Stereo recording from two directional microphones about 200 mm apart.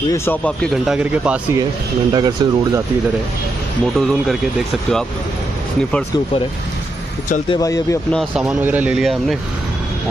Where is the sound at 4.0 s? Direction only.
Centre (ahead or behind).